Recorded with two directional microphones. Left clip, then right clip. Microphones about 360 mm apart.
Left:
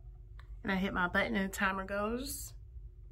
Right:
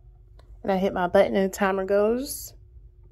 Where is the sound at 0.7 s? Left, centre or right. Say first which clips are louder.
Right 12 dB; centre.